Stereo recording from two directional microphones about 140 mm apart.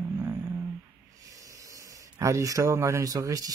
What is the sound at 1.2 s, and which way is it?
Speech, 25° right (ahead or behind).